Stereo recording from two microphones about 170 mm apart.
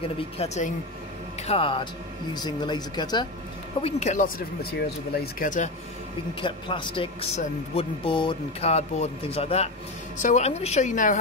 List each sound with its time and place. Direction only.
0.2 s speech: 40° left (ahead or behind); by 3.3 s 25° left (ahead or behind)
3.8 s speech: 45° left (ahead or behind)
6.4 s speech: 30° left (ahead or behind); by 11.1 s 45° left (ahead or behind)